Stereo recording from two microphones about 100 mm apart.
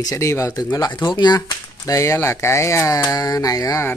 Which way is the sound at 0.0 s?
30° left (ahead or behind).